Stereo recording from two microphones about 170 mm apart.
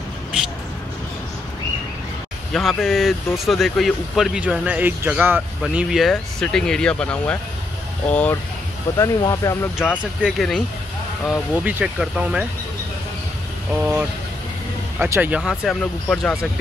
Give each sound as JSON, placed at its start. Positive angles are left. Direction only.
{"t": 2.5, "sound": "speech", "side_deg": 0}
{"t": 9.8, "sound": "speech", "side_deg": -5}
{"t": 13.7, "sound": "speech", "side_deg": -10}